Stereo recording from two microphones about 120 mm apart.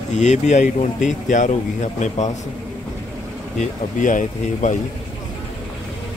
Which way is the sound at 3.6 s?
90° left.